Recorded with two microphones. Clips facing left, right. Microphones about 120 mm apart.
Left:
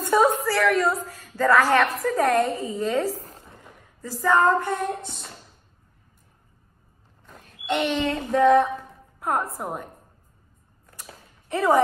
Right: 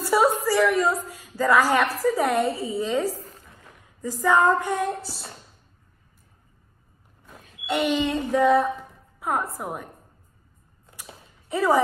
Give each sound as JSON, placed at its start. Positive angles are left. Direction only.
{"t": 0.0, "sound": "a sound", "side_deg": -10}
{"t": 1.0, "sound": "a woman's voice", "side_deg": -10}
{"t": 3.2, "sound": "a sound", "side_deg": 40}
{"t": 4.2, "sound": "a woman's voice", "side_deg": -15}
{"t": 7.2, "sound": "a woman's voice", "side_deg": -5}
{"t": 11.4, "sound": "speech", "side_deg": 0}